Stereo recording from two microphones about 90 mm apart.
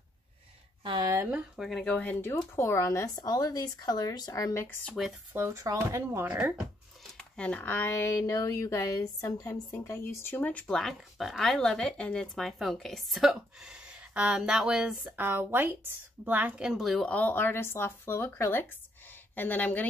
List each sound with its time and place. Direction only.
1.6 s speech: centre (ahead or behind)
1.9 s speech: 15° left (ahead or behind)
2.5 s a woman's voice: 30° left (ahead or behind)
3.2 s speech: 45° left (ahead or behind)
5.3 s speech: 30° right (ahead or behind)
6.2 s speech: 15° right (ahead or behind)
7.2 s a woman's voice: 15° left (ahead or behind)
10.7 s speech: 5° left (ahead or behind)
15.1 s speech: 20° right (ahead or behind); by 17.0 s centre (ahead or behind)
17.0 s speech: 15° left (ahead or behind)